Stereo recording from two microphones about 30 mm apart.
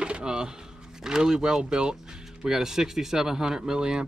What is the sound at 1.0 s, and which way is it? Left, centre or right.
Speech, right.